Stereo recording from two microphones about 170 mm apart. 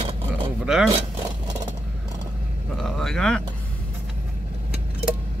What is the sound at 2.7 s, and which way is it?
Speech, 5° left (ahead or behind).